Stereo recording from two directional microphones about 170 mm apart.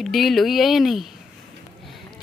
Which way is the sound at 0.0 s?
Centre (ahead or behind).